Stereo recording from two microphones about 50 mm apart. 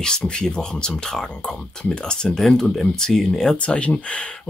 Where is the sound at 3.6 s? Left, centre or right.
Left.